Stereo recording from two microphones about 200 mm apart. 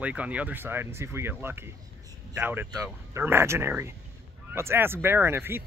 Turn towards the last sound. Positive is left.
turn(degrees=-10)  # may be behind; listen again after turning